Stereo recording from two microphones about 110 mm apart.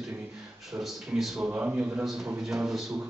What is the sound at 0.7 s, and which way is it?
A man's voice, centre (ahead or behind).